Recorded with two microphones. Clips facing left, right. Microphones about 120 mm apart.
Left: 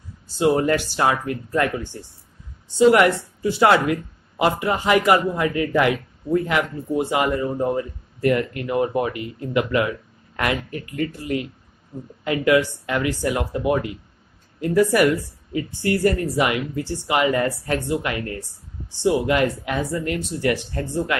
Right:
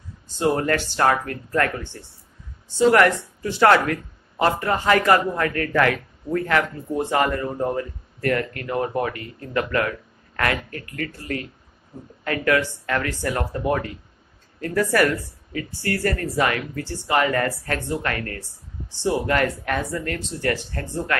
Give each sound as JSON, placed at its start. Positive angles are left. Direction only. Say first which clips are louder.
{"t": 0.4, "sound": "speech", "louder": "left 3 dB", "side_deg": 15}